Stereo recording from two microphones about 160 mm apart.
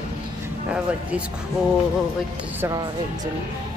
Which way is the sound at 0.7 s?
5° right (ahead or behind).